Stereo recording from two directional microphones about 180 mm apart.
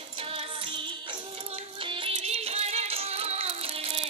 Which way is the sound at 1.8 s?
35° right (ahead or behind).